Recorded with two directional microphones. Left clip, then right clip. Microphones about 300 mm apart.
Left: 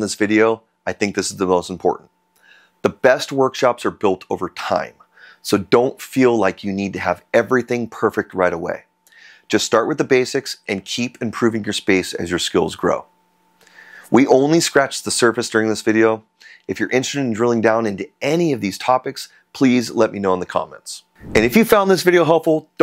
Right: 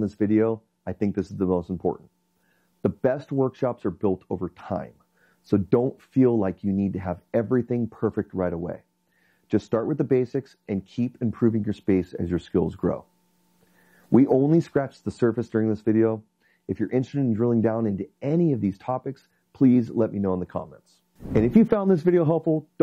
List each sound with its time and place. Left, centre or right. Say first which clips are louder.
0.0 s speech: left 7 dB; centre